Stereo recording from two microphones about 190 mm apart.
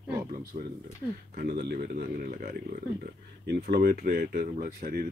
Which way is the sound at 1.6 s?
55° right (ahead or behind).